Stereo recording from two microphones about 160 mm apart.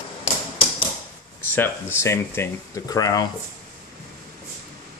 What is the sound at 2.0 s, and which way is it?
Speech, 15° left (ahead or behind).